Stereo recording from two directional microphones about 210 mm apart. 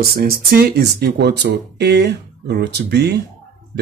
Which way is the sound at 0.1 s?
45° right (ahead or behind).